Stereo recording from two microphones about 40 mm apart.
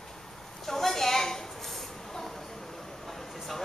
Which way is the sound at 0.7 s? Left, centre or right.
Centre.